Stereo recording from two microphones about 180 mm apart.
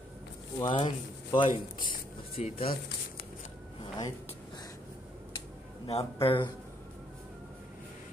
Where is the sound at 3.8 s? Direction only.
20° left (ahead or behind).